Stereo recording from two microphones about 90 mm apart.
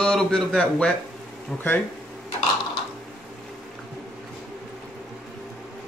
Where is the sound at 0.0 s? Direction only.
10° left (ahead or behind).